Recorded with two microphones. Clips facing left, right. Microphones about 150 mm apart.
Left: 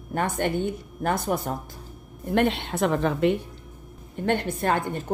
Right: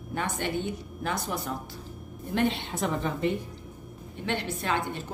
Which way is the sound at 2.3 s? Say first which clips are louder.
Left 4 dB; 60° left (ahead or behind).